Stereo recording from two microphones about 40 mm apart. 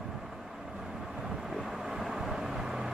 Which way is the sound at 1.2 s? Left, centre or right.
Centre.